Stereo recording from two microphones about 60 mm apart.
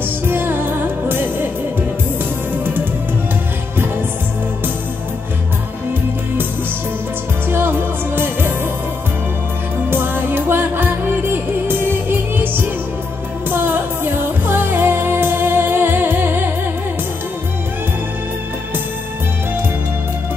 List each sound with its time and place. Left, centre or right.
0.3 s music: right
2.5 s music: right
8.2 s music: right
9.8 s music: right